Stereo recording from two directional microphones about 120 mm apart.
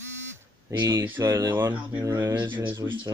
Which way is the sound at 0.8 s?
25° right (ahead or behind).